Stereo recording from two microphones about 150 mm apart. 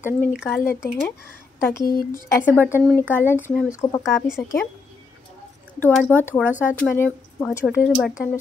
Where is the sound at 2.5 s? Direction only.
15° left (ahead or behind).